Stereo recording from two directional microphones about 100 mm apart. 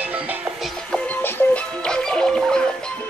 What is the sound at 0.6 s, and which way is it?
Music, 10° left (ahead or behind).